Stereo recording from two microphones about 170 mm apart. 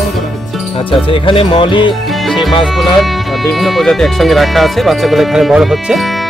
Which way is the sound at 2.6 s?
Centre (ahead or behind).